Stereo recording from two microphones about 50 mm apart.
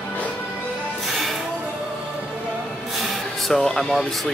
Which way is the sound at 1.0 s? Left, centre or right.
Centre.